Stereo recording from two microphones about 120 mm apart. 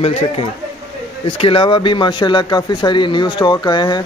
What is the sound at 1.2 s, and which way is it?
Speech, 45° left (ahead or behind).